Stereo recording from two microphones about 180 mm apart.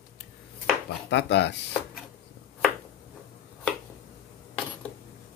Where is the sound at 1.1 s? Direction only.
70° left (ahead or behind).